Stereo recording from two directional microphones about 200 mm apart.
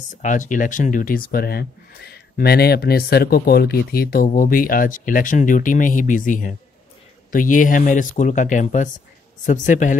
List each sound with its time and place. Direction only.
0.2 s speech: 40° left (ahead or behind)